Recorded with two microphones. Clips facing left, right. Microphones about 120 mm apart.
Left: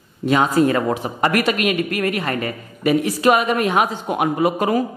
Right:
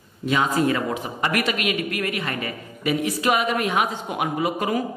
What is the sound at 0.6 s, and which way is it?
A woman's voice, 45° left (ahead or behind).